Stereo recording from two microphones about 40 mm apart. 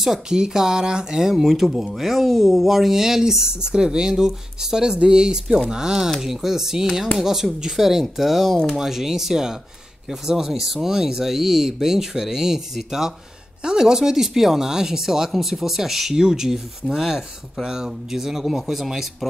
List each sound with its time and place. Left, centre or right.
0.0 s speech: centre
1.3 s speech: centre